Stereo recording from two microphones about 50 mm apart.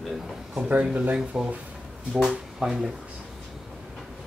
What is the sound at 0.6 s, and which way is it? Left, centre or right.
Speech, right.